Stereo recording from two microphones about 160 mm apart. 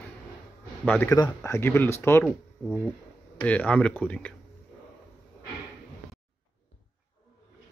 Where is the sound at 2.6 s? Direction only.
Centre (ahead or behind).